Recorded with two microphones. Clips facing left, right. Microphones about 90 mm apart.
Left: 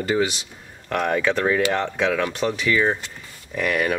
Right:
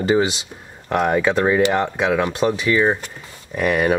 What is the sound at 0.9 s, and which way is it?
Speech, 15° right (ahead or behind).